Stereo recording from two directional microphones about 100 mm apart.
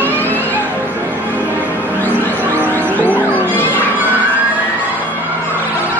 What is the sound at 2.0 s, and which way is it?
Music, 15° left (ahead or behind).